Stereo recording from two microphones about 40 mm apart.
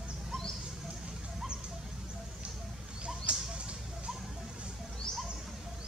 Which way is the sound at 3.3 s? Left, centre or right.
Right.